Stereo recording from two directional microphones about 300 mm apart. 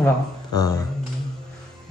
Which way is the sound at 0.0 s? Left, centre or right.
Centre.